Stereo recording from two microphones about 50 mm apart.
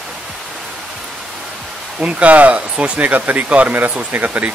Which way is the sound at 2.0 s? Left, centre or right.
Right.